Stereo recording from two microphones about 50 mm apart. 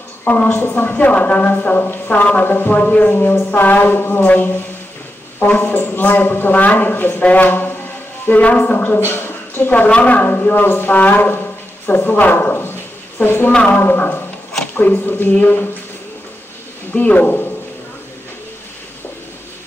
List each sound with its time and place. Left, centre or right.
0.2 s a woman's voice: left
0.8 s speech: left
2.7 s speech: left
5.5 s a man's voice: left
8.3 s speech: left
8.8 s a woman's voice: left
9.8 s a woman's voice: left
10.2 s a woman's voice: left
16.9 s speech: left